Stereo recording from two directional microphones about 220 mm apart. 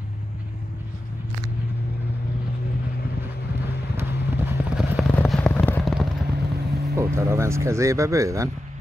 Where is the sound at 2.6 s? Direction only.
45° left (ahead or behind).